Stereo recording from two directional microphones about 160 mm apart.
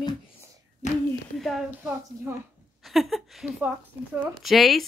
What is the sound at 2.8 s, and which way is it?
A woman's voice, centre (ahead or behind).